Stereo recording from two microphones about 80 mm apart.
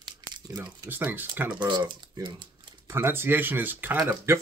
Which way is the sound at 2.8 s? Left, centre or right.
Right.